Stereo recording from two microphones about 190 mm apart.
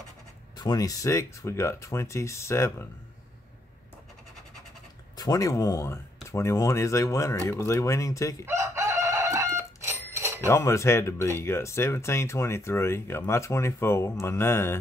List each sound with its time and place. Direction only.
0.6 s speech: 20° left (ahead or behind)
5.1 s speech: 20° left (ahead or behind)
8.5 s bicycle bell: 15° right (ahead or behind)
10.4 s speech: 15° left (ahead or behind)